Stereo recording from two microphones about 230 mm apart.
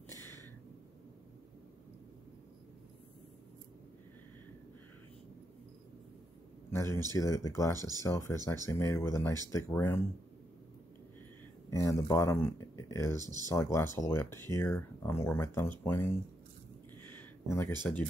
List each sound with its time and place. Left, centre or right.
0.1 s a sound: centre
6.7 s a sound: centre
7.1 s speech: centre
11.7 s speech: centre
13.2 s speech: centre
13.5 s speech: centre
17.5 s speech: centre